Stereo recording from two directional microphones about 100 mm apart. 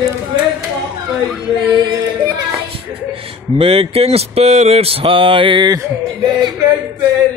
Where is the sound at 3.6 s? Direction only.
80° right; by 5.7 s 55° right (ahead or behind).